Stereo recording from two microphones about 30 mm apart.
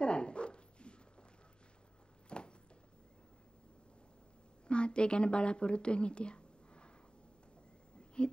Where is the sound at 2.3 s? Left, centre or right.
Left.